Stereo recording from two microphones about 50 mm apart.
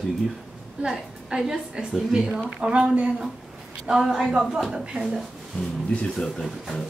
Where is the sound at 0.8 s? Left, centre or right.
Centre.